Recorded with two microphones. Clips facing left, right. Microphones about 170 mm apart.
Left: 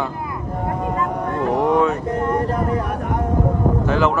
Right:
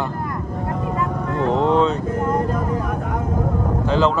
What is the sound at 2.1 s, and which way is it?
Speech, 70° left (ahead or behind).